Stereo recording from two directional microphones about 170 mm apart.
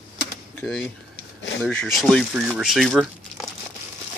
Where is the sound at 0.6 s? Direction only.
5° left (ahead or behind).